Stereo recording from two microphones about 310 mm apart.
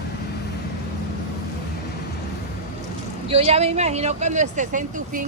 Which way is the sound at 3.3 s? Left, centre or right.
Centre.